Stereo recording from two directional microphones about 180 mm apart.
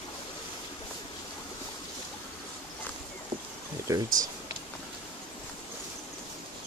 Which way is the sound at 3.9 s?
20° right (ahead or behind).